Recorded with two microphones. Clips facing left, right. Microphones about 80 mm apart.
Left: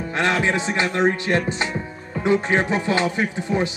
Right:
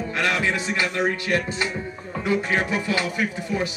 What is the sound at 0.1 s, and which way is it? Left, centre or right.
Speech, left.